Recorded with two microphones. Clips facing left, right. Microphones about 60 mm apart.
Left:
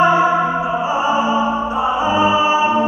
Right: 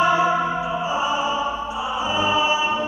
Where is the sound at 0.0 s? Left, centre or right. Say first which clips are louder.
Left 5 dB; left.